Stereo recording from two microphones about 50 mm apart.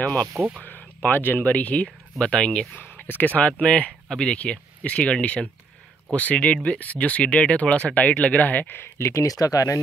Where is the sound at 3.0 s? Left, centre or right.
Left.